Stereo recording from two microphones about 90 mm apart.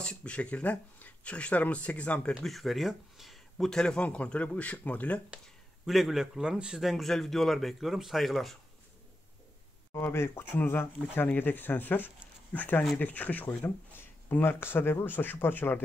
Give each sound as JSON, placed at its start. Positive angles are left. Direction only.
{"t": 0.0, "sound": "speech", "side_deg": 10}
{"t": 2.4, "sound": "speech", "side_deg": 0}
{"t": 5.9, "sound": "a man's voice", "side_deg": 0}
{"t": 9.9, "sound": "speech", "side_deg": 25}